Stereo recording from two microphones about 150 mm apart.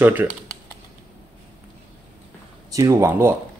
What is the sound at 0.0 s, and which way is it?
Speech, 10° right (ahead or behind).